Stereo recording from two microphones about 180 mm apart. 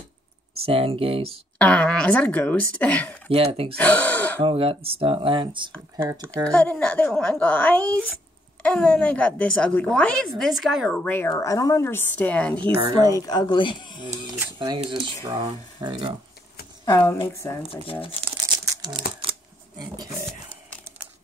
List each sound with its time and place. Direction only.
0.6 s speech: 30° right (ahead or behind)
1.6 s speech: 5° left (ahead or behind)
3.3 s speech: 30° right (ahead or behind)
3.7 s speech: 10° left (ahead or behind)
4.4 s speech: 30° right (ahead or behind)
6.4 s a woman's voice: 5° left (ahead or behind)
11.0 s speech: 10° left (ahead or behind)
12.6 s speech: 25° right (ahead or behind)
13.0 s speech: 20° left (ahead or behind)
14.6 s speech: 25° right (ahead or behind)
16.8 s speech: 20° left (ahead or behind)
18.7 s a sound: 25° right (ahead or behind)